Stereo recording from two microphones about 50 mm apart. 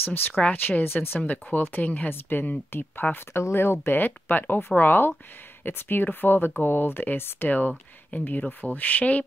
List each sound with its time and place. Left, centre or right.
0.3 s speech: left
3.5 s speech: left
7.4 s speech: left